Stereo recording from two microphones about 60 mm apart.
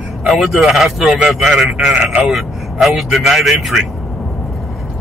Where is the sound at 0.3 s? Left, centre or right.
Centre.